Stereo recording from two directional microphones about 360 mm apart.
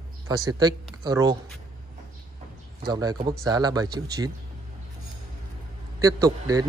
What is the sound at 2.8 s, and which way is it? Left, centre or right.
A man's voice, centre.